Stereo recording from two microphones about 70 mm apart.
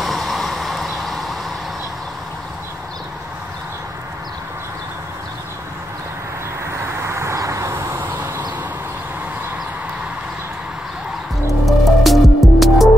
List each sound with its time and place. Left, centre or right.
0.0 s vehicle: centre
6.8 s a sound: right
11.6 s music: centre